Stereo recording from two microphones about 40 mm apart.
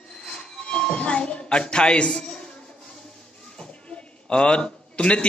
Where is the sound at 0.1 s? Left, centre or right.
Left.